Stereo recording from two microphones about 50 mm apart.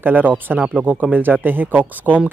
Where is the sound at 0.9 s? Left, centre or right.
Right.